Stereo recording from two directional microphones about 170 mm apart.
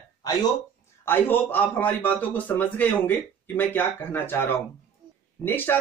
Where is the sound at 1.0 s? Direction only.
10° left (ahead or behind).